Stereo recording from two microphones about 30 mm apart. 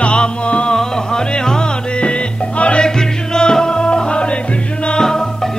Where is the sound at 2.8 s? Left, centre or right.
Left.